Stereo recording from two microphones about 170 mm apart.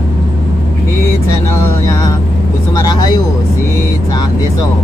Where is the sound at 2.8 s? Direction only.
25° left (ahead or behind).